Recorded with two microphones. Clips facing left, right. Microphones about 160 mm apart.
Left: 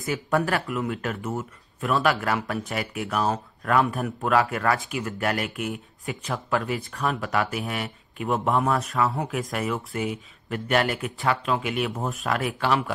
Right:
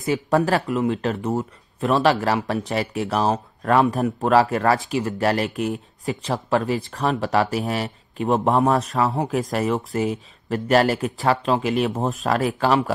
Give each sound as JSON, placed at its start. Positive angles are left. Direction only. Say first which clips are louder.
{"t": 0.0, "sound": "speech", "louder": "right 5 dB", "side_deg": -30}
{"t": 1.3, "sound": "speech", "louder": "right 6 dB", "side_deg": -40}
{"t": 1.9, "sound": "speech", "louder": "right 5 dB", "side_deg": -25}